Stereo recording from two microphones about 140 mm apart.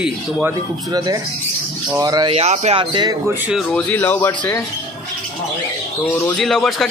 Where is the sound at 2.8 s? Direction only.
30° right (ahead or behind).